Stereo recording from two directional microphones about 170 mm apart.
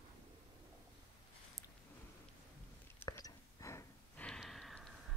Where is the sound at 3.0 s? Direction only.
20° left (ahead or behind).